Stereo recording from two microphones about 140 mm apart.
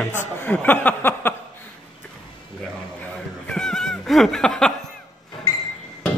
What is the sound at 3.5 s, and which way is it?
Cat, 5° left (ahead or behind).